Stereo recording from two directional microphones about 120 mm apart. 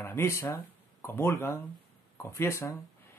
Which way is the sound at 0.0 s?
20° left (ahead or behind).